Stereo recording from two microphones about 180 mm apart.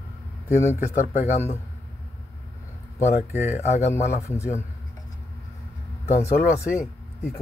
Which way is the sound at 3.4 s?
40° left (ahead or behind).